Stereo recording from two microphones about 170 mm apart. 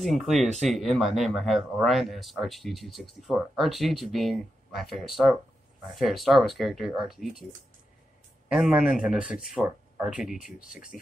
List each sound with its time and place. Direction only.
0.0 s speech: centre (ahead or behind)
0.3 s speech: 40° right (ahead or behind)
0.7 s speech: centre (ahead or behind)
8.5 s speech: 5° right (ahead or behind)